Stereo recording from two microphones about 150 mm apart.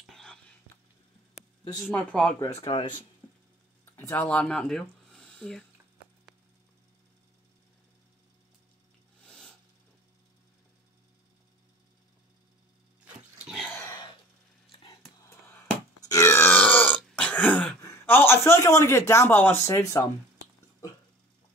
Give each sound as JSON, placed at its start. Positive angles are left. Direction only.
{"t": 0.0, "sound": "a sound", "side_deg": 5}
{"t": 1.9, "sound": "speech", "side_deg": 10}
{"t": 2.5, "sound": "speech", "side_deg": 45}
{"t": 4.1, "sound": "speech", "side_deg": 10}
{"t": 9.2, "sound": "a sound", "side_deg": 5}
{"t": 16.0, "sound": "burping", "side_deg": 25}
{"t": 17.8, "sound": "a man's voice", "side_deg": 15}